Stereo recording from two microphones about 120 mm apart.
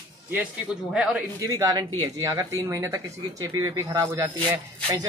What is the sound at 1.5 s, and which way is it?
Speech, 30° right (ahead or behind).